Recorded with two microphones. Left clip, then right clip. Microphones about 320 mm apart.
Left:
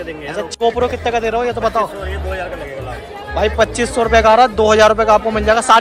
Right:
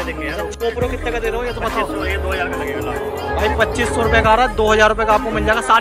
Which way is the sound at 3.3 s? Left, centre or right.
Centre.